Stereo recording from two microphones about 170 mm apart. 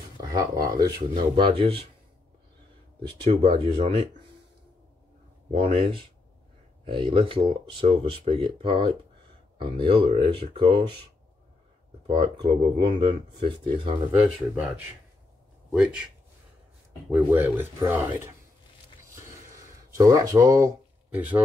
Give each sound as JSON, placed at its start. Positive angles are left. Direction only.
{"t": 0.3, "sound": "speech", "side_deg": -20}
{"t": 3.3, "sound": "speech", "side_deg": -35}
{"t": 5.5, "sound": "speech", "side_deg": -35}
{"t": 12.1, "sound": "speech", "side_deg": -30}
{"t": 14.1, "sound": "speech", "side_deg": -10}
{"t": 17.1, "sound": "speech", "side_deg": -10}
{"t": 20.0, "sound": "speech", "side_deg": -20}